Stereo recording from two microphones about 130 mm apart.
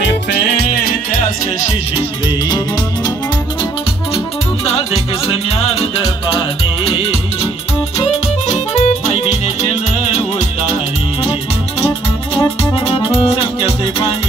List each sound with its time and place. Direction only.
2.0 s music: 35° left (ahead or behind)
4.9 s music: 50° left (ahead or behind)
8.0 s music: 60° left (ahead or behind)
12.4 s music: 40° left (ahead or behind)